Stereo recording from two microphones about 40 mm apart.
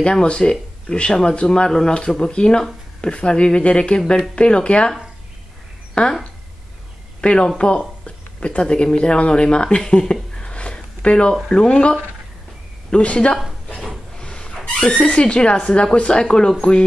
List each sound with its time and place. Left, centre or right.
0.0 s speech: left
6.0 s speech: left
7.2 s speech: left
10.5 s a sound: left
11.4 s speech: left
14.1 s a sound: centre
14.8 s speech: left